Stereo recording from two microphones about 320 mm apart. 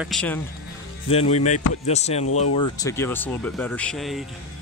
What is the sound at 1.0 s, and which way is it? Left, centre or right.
Speech, centre.